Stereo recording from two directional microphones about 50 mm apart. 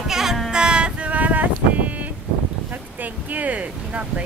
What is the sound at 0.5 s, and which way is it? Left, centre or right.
Music, centre.